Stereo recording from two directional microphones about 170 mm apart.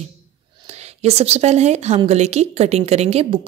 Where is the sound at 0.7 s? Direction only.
40° right (ahead or behind).